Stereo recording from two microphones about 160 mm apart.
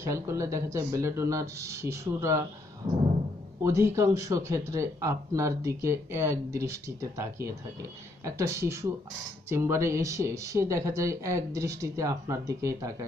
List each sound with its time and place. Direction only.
0.0 s speech: 15° right (ahead or behind)
3.6 s speech: 20° right (ahead or behind)